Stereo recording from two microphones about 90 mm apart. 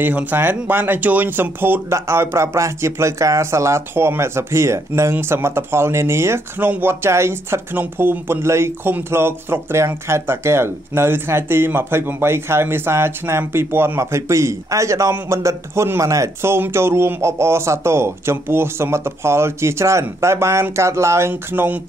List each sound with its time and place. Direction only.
0.0 s speech: 20° right (ahead or behind)